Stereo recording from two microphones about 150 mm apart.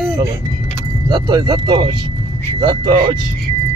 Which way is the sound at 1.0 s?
30° right (ahead or behind).